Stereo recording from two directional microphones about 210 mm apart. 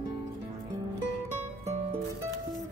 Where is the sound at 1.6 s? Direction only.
30° right (ahead or behind).